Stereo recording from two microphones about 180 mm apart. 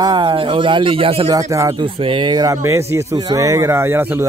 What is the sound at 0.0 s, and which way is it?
A man's voice, 25° right (ahead or behind).